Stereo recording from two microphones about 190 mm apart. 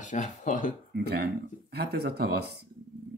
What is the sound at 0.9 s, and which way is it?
Speech, 55° right (ahead or behind).